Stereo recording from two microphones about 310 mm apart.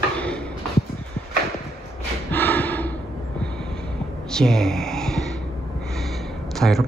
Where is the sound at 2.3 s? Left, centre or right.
Centre.